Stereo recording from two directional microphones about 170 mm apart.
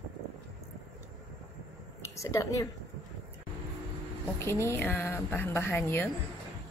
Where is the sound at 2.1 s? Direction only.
20° left (ahead or behind).